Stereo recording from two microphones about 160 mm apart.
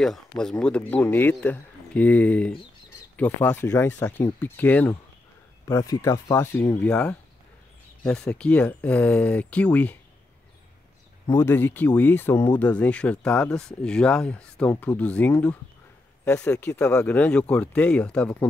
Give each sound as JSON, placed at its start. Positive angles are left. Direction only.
{"t": 0.0, "sound": "speech", "side_deg": 5}
{"t": 11.2, "sound": "speech", "side_deg": 15}